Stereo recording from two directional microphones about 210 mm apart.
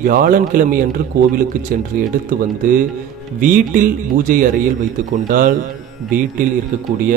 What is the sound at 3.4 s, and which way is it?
Speech, 40° right (ahead or behind).